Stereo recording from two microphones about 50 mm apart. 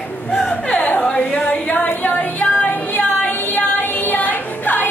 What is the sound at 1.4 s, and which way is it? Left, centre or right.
Music, left.